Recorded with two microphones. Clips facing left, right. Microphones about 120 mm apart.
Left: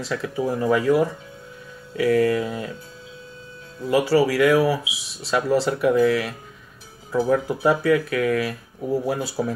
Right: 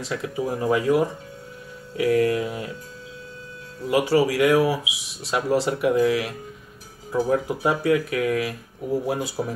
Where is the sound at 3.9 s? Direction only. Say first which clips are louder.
Left 1 dB; 20° right (ahead or behind).